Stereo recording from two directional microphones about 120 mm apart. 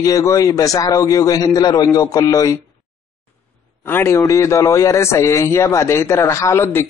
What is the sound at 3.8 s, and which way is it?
Speech, 20° left (ahead or behind).